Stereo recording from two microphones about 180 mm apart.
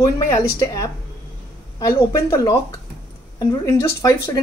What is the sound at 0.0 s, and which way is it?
Speech, 15° left (ahead or behind).